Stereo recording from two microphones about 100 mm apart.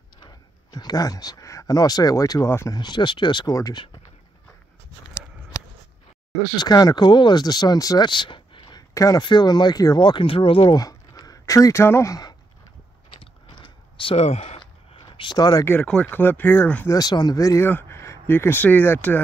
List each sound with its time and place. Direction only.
0.2 s speech: 40° left (ahead or behind)
2.7 s speech: 45° left (ahead or behind)
6.6 s speech: 40° left (ahead or behind)
8.1 s a sound: 55° left (ahead or behind)
8.9 s speech: 35° left (ahead or behind)
9.2 s speech: 50° left (ahead or behind); by 10.7 s 65° left (ahead or behind)
10.7 s a sound: 40° left (ahead or behind)
13.2 s a sound: 60° left (ahead or behind); by 14.6 s 90° left
14.6 s a sound: 55° left (ahead or behind)
15.3 s speech: 40° left (ahead or behind)
15.8 s speech: 10° left (ahead or behind)
16.2 s speech: 20° left (ahead or behind)
16.8 s speech: 40° left (ahead or behind); by 19.2 s 15° left (ahead or behind)